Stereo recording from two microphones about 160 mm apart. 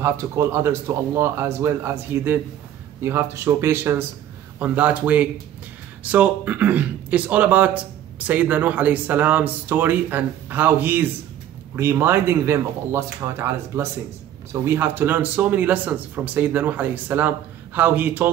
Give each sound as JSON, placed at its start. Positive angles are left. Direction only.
{"t": 0.0, "sound": "speech", "side_deg": -15}